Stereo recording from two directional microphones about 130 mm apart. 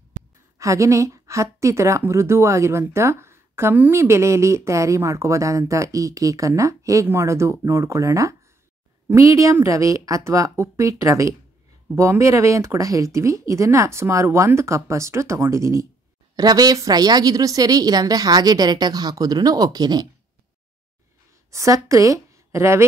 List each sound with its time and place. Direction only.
0.6 s a woman's voice: 25° right (ahead or behind)
21.5 s a woman's voice: 25° right (ahead or behind)